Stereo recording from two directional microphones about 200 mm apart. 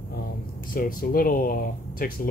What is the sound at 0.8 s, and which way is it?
Speech, 45° left (ahead or behind).